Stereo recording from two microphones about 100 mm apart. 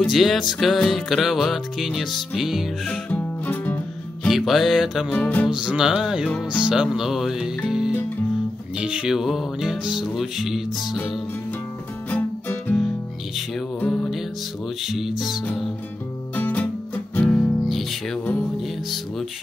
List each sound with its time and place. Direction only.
0.0 s music: centre (ahead or behind)
2.9 s music: 15° left (ahead or behind)
4.3 s music: centre (ahead or behind)
5.1 s music: 10° left (ahead or behind)
5.5 s music: 10° right (ahead or behind)
12.1 s music: 15° left (ahead or behind)
13.7 s music: 5° left (ahead or behind)
16.3 s music: 15° left (ahead or behind)
17.6 s music: centre (ahead or behind)